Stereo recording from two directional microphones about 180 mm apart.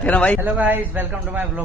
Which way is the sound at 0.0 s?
5° left (ahead or behind).